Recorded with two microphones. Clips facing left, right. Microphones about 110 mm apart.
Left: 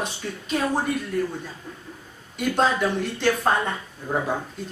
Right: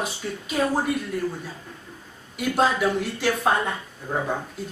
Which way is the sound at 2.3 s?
5° right (ahead or behind).